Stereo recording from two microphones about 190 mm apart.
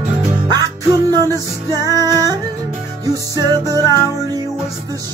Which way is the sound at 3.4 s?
20° right (ahead or behind).